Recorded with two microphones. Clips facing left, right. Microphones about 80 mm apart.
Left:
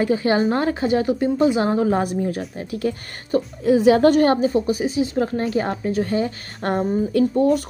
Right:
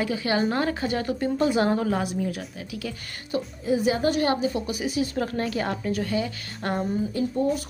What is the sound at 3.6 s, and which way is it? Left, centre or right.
Speech, left.